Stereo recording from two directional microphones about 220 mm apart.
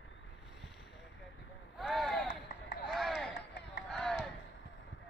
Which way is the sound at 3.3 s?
50° left (ahead or behind).